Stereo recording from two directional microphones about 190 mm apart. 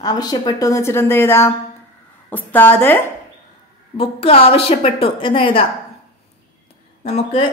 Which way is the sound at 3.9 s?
30° left (ahead or behind).